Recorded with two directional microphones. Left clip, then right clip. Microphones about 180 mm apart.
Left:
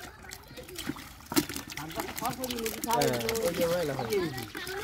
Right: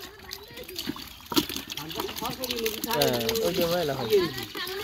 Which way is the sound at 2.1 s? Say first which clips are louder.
Right 1 dB; 45° left (ahead or behind).